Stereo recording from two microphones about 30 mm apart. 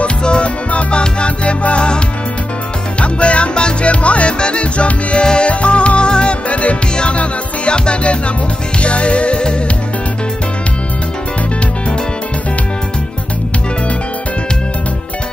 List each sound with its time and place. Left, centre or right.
0.2 s music: left
3.0 s music: left
5.2 s music: left
5.5 s music: left
6.5 s music: left